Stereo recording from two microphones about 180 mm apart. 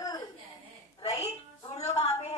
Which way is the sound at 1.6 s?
35° left (ahead or behind).